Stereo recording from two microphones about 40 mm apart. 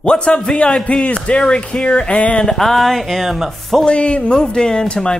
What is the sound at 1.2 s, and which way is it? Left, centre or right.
Speech, left.